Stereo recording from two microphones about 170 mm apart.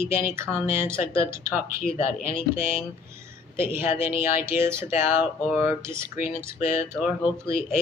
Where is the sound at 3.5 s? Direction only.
15° right (ahead or behind).